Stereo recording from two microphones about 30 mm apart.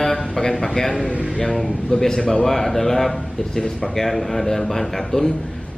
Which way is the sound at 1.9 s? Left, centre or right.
Left.